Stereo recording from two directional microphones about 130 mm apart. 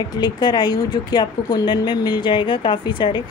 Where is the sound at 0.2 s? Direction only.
35° left (ahead or behind).